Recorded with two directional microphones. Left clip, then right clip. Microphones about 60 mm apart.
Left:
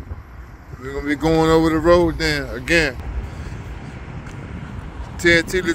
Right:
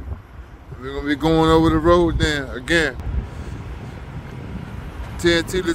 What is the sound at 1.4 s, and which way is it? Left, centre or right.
Speech, right.